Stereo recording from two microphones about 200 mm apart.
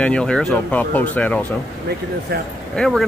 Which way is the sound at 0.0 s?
5° left (ahead or behind).